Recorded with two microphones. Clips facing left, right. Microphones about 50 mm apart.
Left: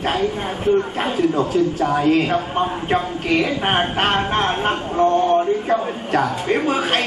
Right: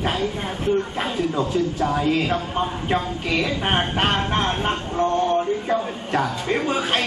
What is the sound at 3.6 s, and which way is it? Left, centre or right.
Speech, centre.